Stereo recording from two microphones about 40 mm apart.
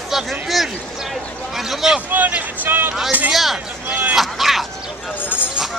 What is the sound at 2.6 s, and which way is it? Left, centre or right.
Speech, right.